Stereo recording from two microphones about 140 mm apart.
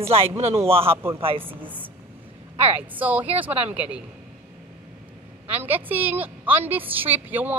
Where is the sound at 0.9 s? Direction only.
15° right (ahead or behind).